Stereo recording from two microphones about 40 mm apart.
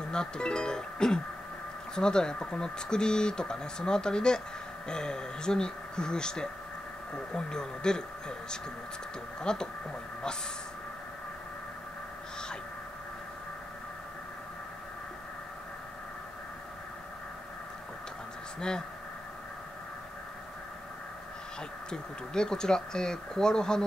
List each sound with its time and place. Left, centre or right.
0.1 s speech: centre
21.9 s speech: centre